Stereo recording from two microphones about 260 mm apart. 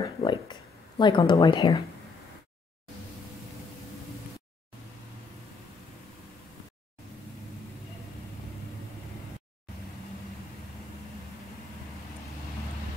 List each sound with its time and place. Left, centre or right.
0.2 s speech: centre